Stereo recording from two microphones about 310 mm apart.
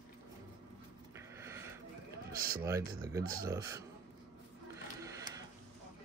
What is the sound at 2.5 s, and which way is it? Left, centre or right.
Speech, centre.